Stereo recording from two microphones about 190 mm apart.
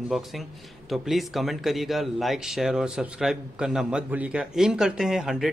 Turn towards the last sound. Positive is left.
turn(degrees=0)  # may be behind; listen again after turning